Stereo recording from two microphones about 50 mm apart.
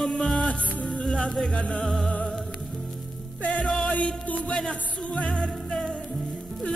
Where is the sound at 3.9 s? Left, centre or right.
Left.